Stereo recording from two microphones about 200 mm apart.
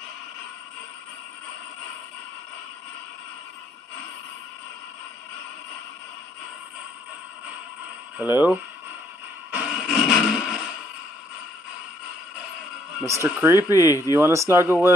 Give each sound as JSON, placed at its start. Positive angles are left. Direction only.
{"t": 8.2, "sound": "speech", "side_deg": -10}
{"t": 9.5, "sound": "a sound", "side_deg": -5}
{"t": 13.0, "sound": "speech", "side_deg": -15}
{"t": 13.7, "sound": "speech", "side_deg": 15}
{"t": 14.1, "sound": "speech", "side_deg": -15}